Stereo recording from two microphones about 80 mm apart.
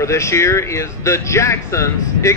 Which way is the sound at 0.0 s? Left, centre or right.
Left.